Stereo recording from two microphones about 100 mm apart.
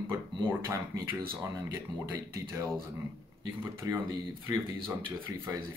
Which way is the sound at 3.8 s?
30° right (ahead or behind).